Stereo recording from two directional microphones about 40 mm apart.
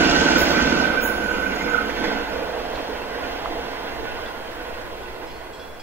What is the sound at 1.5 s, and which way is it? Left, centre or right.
Train, right.